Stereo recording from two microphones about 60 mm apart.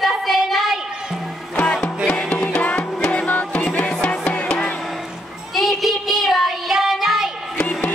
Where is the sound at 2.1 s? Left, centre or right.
Left.